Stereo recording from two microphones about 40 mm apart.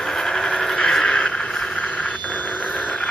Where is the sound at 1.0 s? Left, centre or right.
Left.